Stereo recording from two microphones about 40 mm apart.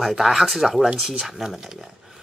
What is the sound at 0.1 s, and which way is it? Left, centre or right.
Speech, centre.